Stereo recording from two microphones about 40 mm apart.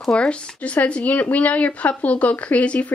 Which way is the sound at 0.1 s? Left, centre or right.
Left.